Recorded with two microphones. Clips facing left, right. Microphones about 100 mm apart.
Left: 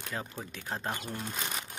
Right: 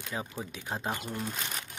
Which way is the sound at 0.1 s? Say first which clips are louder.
Right 2 dB; 10° right (ahead or behind).